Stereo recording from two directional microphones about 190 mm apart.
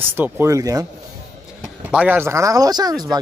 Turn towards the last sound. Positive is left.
turn(degrees=-20)  # may be behind; listen again after turning